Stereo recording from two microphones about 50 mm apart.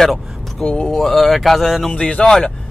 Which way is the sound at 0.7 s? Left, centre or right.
Centre.